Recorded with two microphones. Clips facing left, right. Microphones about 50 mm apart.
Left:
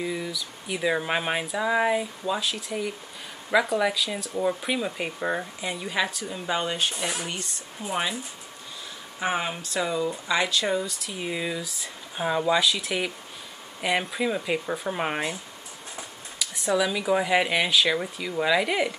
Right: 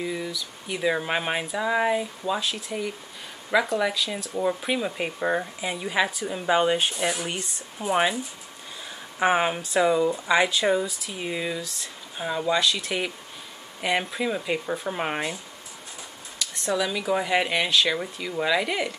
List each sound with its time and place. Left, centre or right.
0.0 s speech: centre
9.2 s speech: right; by 15.3 s centre
16.3 s speech: centre